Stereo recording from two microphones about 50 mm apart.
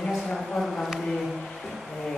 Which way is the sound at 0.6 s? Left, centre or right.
Centre.